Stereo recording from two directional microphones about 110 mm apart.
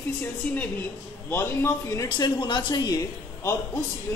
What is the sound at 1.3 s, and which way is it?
Speech, 20° left (ahead or behind).